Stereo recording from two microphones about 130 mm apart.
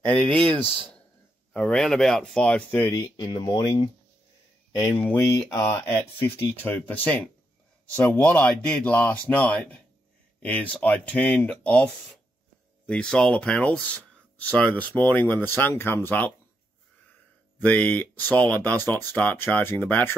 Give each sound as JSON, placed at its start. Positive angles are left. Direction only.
{"t": 0.0, "sound": "speech", "side_deg": 10}
{"t": 0.4, "sound": "speech", "side_deg": -45}
{"t": 1.5, "sound": "speech", "side_deg": 5}
{"t": 2.8, "sound": "speech", "side_deg": 25}
{"t": 3.3, "sound": "speech", "side_deg": 35}
{"t": 5.2, "sound": "speech", "side_deg": 20}
{"t": 17.6, "sound": "speech", "side_deg": 10}